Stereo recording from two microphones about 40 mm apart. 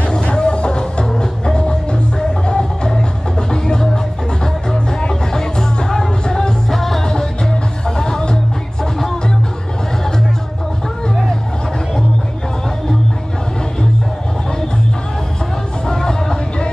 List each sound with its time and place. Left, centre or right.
0.1 s music: left
6.7 s music: centre
8.0 s music: centre
15.9 s a sound: centre